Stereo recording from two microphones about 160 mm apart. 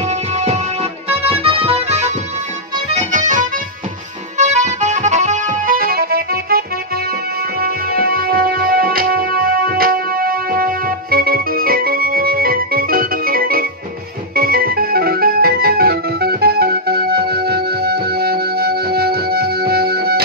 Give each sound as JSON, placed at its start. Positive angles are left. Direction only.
{"t": 0.1, "sound": "music", "side_deg": -45}
{"t": 2.9, "sound": "accordion", "side_deg": -45}
{"t": 4.4, "sound": "music", "side_deg": -45}
{"t": 7.6, "sound": "music", "side_deg": -70}
{"t": 14.3, "sound": "organ", "side_deg": -70}